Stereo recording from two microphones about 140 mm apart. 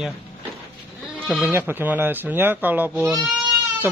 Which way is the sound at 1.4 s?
15° right (ahead or behind).